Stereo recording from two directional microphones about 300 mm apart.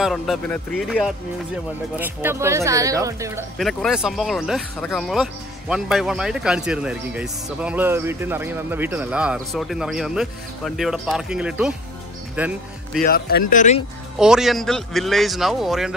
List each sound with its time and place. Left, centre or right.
0.0 s speech: centre
3.5 s speech: centre
13.0 s speech: left
14.1 s speech: centre